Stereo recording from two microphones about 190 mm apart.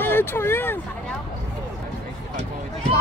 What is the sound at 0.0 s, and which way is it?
Speech, 10° left (ahead or behind).